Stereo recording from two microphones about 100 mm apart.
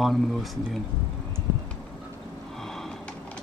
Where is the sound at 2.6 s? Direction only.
5° left (ahead or behind).